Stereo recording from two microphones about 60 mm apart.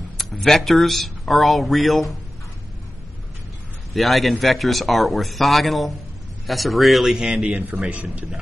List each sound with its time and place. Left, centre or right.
0.2 s speech: centre
3.9 s a man's voice: centre
7.4 s a man's voice: centre